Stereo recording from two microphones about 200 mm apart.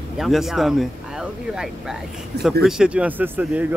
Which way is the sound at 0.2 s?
Centre (ahead or behind).